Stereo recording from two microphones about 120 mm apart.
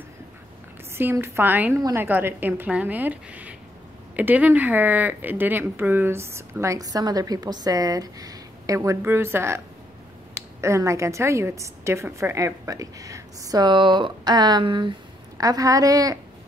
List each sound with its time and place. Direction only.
0.9 s a woman's voice: 20° right (ahead or behind)
10.6 s speech: 25° right (ahead or behind); by 15.0 s 45° right (ahead or behind)
15.3 s a woman's voice: 30° right (ahead or behind)